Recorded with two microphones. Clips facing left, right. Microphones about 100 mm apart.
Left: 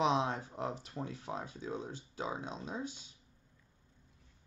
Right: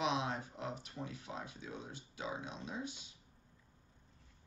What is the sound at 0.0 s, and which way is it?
Speech, 35° left (ahead or behind).